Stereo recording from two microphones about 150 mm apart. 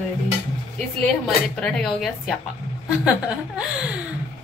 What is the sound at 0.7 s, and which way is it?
A woman's voice, 5° left (ahead or behind).